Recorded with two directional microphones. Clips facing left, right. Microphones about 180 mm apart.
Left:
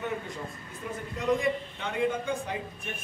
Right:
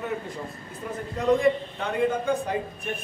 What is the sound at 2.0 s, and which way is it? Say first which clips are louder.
Speech: right 4 dB; 50° right (ahead or behind).